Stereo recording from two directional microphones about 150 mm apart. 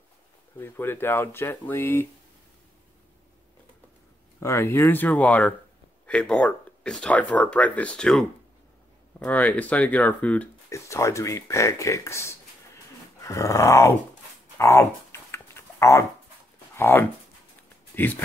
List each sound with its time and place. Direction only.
0.6 s speech: 15° left (ahead or behind)
4.4 s speech: 20° left (ahead or behind)
10.7 s speech: 20° left (ahead or behind)
14.6 s dog: 20° left (ahead or behind)
16.7 s speech: 15° left (ahead or behind)